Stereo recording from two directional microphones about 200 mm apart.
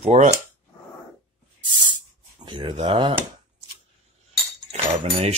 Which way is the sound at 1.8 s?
20° right (ahead or behind).